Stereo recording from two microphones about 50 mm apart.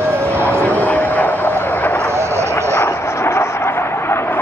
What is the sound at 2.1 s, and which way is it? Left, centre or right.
Vehicle, right.